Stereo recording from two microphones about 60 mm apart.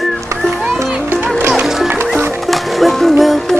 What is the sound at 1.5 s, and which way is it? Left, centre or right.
Music, centre.